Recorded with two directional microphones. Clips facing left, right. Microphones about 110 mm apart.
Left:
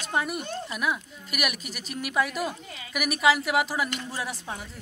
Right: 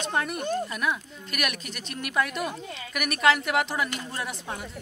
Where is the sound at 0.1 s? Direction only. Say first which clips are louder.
Even; 5° left (ahead or behind).